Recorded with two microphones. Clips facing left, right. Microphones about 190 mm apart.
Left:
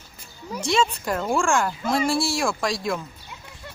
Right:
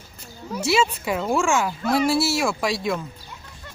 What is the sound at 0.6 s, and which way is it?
Speech, 5° right (ahead or behind).